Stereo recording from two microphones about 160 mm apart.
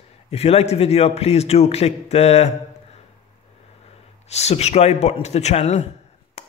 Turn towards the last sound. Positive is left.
turn(degrees=40)  # may be behind; listen again after turning